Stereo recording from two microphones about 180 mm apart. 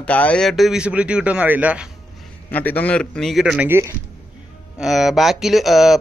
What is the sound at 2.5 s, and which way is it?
Speech, 10° left (ahead or behind).